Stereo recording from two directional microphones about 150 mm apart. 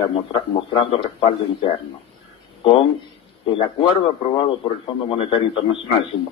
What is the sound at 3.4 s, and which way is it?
A man's voice, 35° left (ahead or behind).